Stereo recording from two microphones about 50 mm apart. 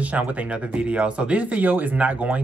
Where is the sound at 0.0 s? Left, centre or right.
Right.